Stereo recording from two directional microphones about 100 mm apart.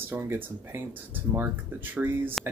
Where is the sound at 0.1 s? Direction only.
25° right (ahead or behind).